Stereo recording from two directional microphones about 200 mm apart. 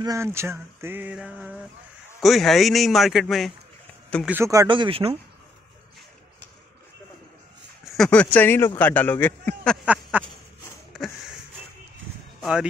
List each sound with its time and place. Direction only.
0.0 s a sound: 15° right (ahead or behind)
2.2 s a man's voice: centre (ahead or behind)
4.3 s speech: 15° right (ahead or behind)
7.9 s speech: 5° left (ahead or behind)
12.4 s speech: centre (ahead or behind)